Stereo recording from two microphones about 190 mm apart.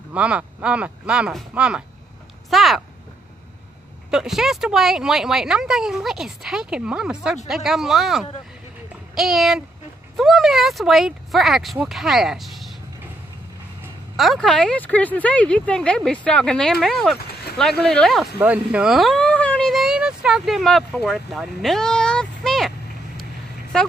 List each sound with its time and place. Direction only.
0.1 s speech: 5° right (ahead or behind)
4.1 s speech: centre (ahead or behind)
14.1 s speech: centre (ahead or behind)
17.2 s a sound: 55° left (ahead or behind)
17.6 s speech: centre (ahead or behind)
23.7 s speech: 5° left (ahead or behind)